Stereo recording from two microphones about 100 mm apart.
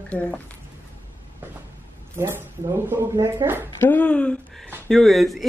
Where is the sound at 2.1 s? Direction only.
25° right (ahead or behind).